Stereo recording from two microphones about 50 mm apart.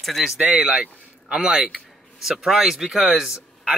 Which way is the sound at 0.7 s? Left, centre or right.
Right.